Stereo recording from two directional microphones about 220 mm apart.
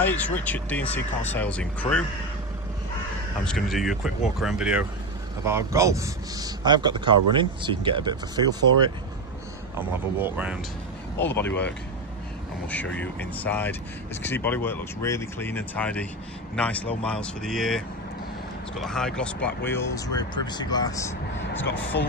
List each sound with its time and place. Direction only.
0.0 s speech: 5° left (ahead or behind)
3.4 s a man's voice: centre (ahead or behind); by 8.9 s 20° right (ahead or behind)
9.8 s speech: 10° right (ahead or behind)
11.3 s speech: 10° left (ahead or behind)
12.6 s speech: 5° left (ahead or behind)
21.4 s speech: 50° left (ahead or behind)